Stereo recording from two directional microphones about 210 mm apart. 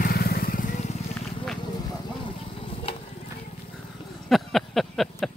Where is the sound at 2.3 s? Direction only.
25° left (ahead or behind).